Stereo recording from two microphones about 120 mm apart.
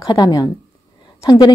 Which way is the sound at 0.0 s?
35° left (ahead or behind).